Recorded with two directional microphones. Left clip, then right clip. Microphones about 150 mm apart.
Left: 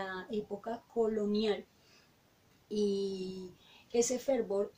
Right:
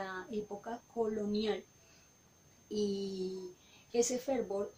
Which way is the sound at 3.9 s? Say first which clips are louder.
Left 2 dB; 10° left (ahead or behind).